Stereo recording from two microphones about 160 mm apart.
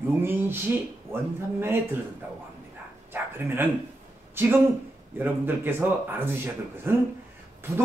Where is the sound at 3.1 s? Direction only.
10° right (ahead or behind).